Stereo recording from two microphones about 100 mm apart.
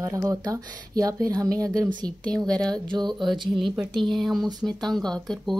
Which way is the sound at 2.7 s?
45° right (ahead or behind).